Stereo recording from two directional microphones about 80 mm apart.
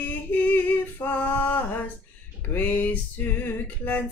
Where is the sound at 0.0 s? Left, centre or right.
Left.